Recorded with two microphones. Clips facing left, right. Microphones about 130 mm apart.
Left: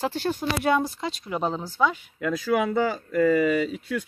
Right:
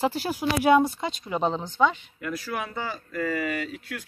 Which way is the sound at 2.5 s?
90° left.